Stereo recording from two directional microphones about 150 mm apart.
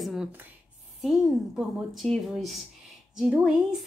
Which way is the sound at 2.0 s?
Centre (ahead or behind).